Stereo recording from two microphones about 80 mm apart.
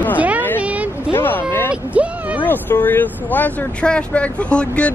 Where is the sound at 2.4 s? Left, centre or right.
Left.